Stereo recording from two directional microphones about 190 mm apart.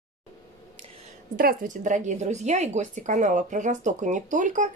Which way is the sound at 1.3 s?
45° right (ahead or behind).